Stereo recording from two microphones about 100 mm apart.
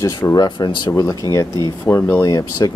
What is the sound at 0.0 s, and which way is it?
Speech, 35° left (ahead or behind).